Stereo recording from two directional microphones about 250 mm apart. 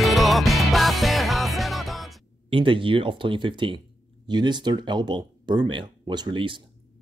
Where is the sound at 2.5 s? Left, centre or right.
Centre.